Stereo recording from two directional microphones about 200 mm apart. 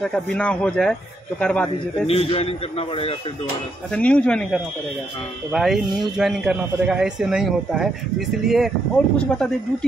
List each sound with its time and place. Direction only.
0.0 s speech: 5° left (ahead or behind)
2.0 s a man's voice: 30° left (ahead or behind)
3.9 s speech: 5° left (ahead or behind)
5.5 s speech: centre (ahead or behind)